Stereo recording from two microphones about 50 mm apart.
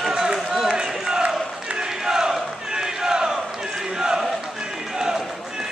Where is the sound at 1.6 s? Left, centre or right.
Centre.